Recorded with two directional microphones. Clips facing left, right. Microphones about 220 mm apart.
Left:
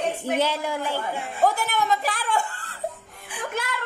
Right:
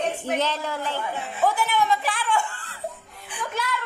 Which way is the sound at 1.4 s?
45° left (ahead or behind).